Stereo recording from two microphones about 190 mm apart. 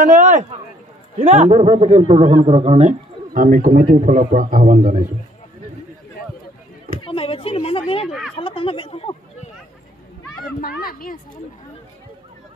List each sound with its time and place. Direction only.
0.0 s a man's voice: 40° right (ahead or behind)
3.3 s a man's voice: 45° right (ahead or behind)
7.0 s a sound: 25° left (ahead or behind)
10.6 s a woman's voice: 50° left (ahead or behind)